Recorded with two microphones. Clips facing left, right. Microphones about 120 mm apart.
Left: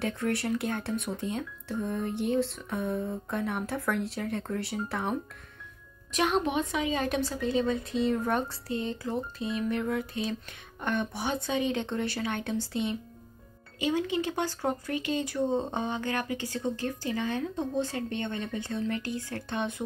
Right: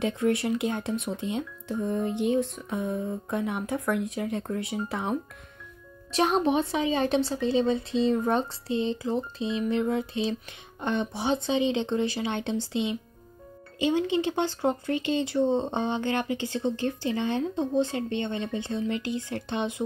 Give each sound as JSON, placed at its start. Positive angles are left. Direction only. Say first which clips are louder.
{"t": 0.0, "sound": "speech", "louder": "right 4 dB", "side_deg": -20}
{"t": 6.1, "sound": "speech", "louder": "right 4 dB", "side_deg": -35}